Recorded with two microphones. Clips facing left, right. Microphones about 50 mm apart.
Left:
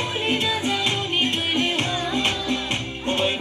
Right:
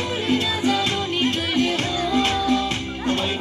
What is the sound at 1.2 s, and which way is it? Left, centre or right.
Music, left.